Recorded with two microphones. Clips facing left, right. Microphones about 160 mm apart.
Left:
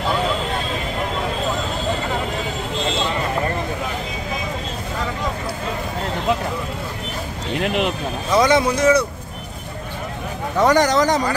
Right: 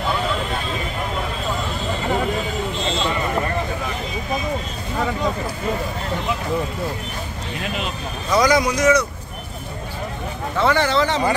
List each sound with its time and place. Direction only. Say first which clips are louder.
7.6 s speech: left 7 dB; 60° left (ahead or behind)
8.4 s speech: left 1 dB; 25° left (ahead or behind)
10.6 s speech: left 3 dB; 40° left (ahead or behind)